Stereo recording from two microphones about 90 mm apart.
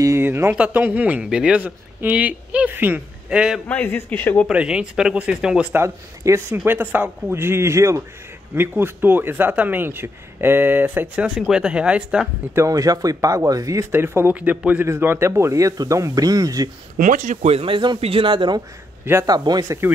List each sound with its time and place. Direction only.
0.2 s a man's voice: 25° right (ahead or behind)
3.3 s a man's voice: 10° right (ahead or behind)
3.6 s a man's voice: 20° left (ahead or behind)
4.5 s a man's voice: 10° right (ahead or behind)
5.8 s speech: 30° right (ahead or behind)
11.2 s a man's voice: 5° right (ahead or behind)
12.5 s speech: 40° right (ahead or behind)
13.9 s a man's voice: 25° right (ahead or behind); by 16.7 s 45° right (ahead or behind)
17.6 s a man's voice: 70° right (ahead or behind)
19.2 s speech: 50° right (ahead or behind)
19.8 s speech: 25° right (ahead or behind)